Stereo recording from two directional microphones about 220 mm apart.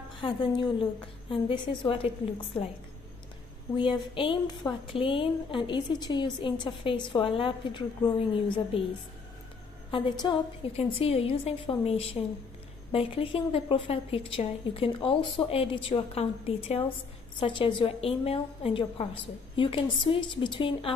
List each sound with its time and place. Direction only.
0.2 s a woman's voice: 20° left (ahead or behind)
3.7 s a woman's voice: 25° left (ahead or behind)
9.8 s a woman's voice: 20° left (ahead or behind)